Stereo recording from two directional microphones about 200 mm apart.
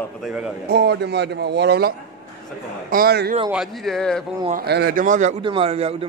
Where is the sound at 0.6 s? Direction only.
55° right (ahead or behind).